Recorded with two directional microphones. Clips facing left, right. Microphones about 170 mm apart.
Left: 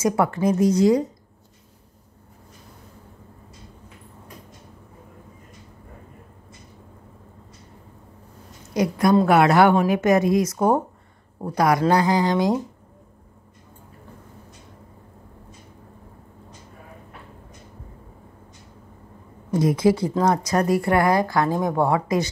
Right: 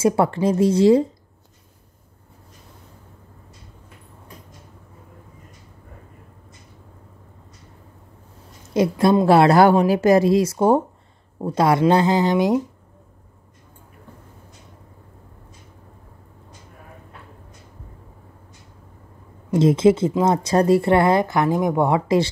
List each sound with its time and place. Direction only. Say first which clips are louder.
0.0 s speech: right 2 dB; 30° right (ahead or behind)
8.7 s a woman's voice: right 2 dB; 25° right (ahead or behind)
19.5 s speech: right 4 dB; 25° right (ahead or behind)